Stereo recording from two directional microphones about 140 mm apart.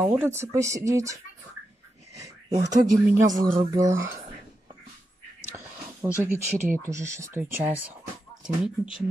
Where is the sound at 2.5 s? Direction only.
55° right (ahead or behind).